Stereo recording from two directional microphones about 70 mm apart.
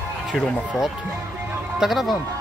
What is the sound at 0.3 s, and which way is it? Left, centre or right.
Speech, centre.